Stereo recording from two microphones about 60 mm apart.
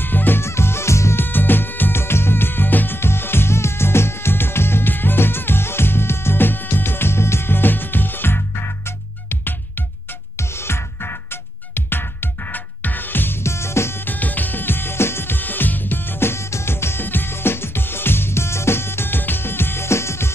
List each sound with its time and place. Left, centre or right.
0.0 s music: left
0.4 s music: left
1.2 s music: left
13.4 s music: left
14.0 s music: left